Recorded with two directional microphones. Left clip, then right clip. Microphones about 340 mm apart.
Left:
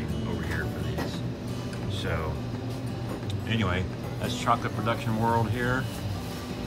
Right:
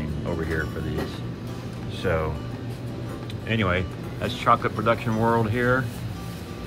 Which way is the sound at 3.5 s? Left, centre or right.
Centre.